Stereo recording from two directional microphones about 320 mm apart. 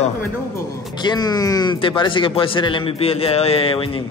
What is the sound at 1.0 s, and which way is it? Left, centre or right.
Speech, centre.